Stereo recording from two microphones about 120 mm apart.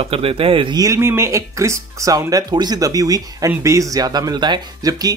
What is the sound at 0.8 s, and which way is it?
Speech, 25° right (ahead or behind).